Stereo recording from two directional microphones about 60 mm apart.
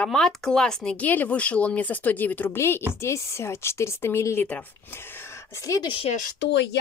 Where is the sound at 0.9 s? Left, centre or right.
Left.